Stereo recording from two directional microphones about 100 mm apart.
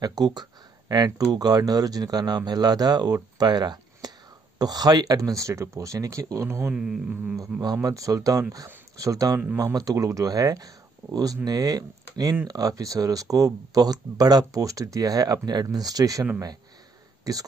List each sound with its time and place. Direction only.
0.0 s speech: 40° right (ahead or behind)
6.7 s a sound: 10° right (ahead or behind)
7.6 s speech: 35° right (ahead or behind)